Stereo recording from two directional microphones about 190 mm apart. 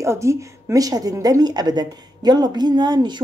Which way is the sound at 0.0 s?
15° right (ahead or behind).